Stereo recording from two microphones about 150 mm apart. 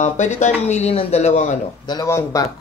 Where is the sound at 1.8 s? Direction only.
20° left (ahead or behind).